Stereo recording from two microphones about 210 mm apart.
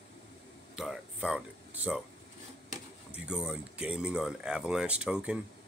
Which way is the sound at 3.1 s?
5° right (ahead or behind).